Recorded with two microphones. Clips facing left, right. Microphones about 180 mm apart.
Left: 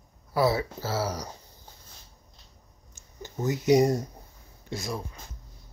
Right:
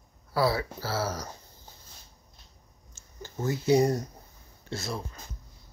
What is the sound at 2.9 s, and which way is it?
Speech, 20° left (ahead or behind).